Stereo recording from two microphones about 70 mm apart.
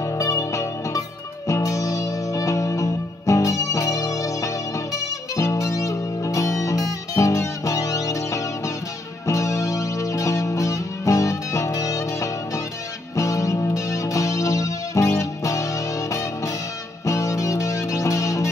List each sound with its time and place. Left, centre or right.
0.0 s music: left